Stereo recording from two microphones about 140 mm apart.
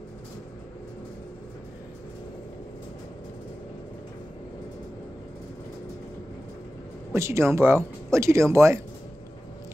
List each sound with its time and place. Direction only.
7.2 s speech: 20° right (ahead or behind)